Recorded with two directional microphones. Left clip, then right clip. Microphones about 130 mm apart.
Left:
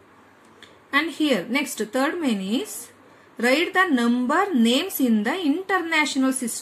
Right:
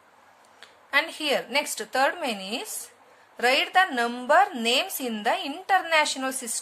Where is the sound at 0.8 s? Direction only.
30° right (ahead or behind).